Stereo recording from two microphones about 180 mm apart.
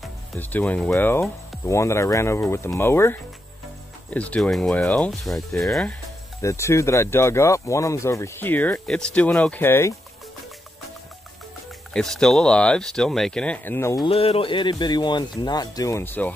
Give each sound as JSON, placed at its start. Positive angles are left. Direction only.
{"t": 0.4, "sound": "speech", "side_deg": 10}
{"t": 6.4, "sound": "speech", "side_deg": 15}
{"t": 11.9, "sound": "speech", "side_deg": 5}
{"t": 14.0, "sound": "speech", "side_deg": 30}